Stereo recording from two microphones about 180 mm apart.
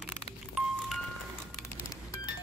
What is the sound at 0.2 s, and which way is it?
Music, centre (ahead or behind).